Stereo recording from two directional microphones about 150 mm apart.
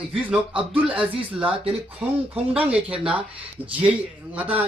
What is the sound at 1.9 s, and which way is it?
Speech, 10° right (ahead or behind).